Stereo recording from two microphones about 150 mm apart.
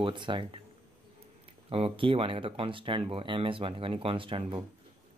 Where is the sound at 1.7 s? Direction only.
40° right (ahead or behind).